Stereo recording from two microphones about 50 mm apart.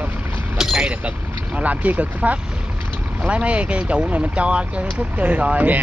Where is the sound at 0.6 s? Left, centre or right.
Centre.